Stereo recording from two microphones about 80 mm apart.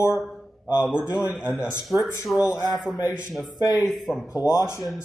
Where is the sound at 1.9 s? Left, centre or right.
Centre.